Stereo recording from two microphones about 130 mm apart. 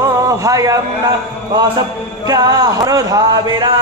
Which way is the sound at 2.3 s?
30° right (ahead or behind).